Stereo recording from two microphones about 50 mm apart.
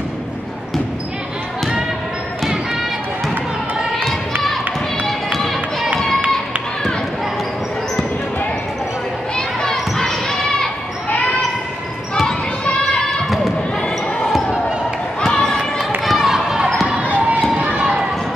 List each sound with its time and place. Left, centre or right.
5.0 s run: centre
9.6 s basketball bounce: centre
15.3 s a sound: centre
16.0 s run: centre
17.1 s run: right
17.7 s basketball bounce: centre